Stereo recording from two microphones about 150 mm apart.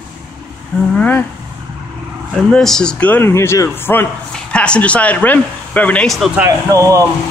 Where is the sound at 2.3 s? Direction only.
5° left (ahead or behind).